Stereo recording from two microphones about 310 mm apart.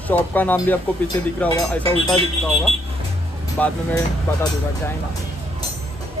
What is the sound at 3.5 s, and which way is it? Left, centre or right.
Speech, centre.